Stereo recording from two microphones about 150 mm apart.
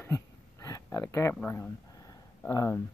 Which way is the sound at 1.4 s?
10° left (ahead or behind).